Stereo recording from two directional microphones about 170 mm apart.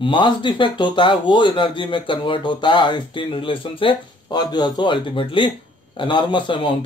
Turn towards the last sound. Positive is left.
turn(degrees=30)  # may be behind; listen again after turning